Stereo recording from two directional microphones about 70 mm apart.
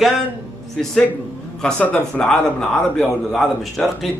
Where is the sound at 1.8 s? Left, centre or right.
Centre.